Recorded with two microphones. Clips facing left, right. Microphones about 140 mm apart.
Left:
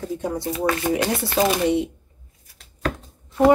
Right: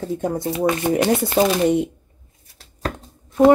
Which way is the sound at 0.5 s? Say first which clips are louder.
Right 3 dB; 25° right (ahead or behind).